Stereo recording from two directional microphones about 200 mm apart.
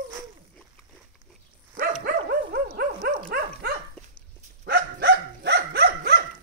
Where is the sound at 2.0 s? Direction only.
50° right (ahead or behind).